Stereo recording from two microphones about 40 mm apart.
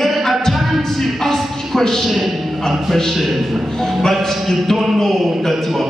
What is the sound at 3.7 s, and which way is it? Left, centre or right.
Music, centre.